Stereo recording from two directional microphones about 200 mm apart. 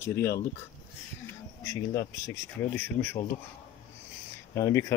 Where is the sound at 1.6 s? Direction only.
15° left (ahead or behind).